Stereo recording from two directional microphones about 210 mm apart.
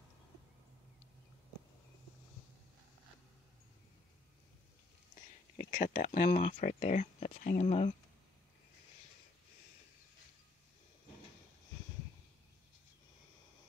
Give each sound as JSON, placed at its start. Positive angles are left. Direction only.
{"t": 5.1, "sound": "whispering", "side_deg": 20}
{"t": 5.8, "sound": "speech", "side_deg": 40}